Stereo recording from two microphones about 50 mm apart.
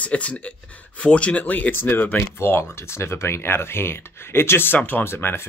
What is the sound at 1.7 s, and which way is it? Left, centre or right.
Speech, left.